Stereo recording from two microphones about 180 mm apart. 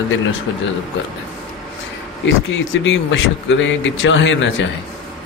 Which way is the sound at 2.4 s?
90° left.